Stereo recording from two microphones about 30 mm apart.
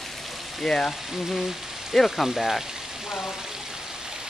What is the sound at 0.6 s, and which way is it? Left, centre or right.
Speech, left.